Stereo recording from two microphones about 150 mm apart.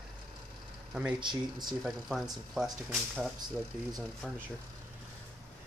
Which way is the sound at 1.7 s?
Centre (ahead or behind).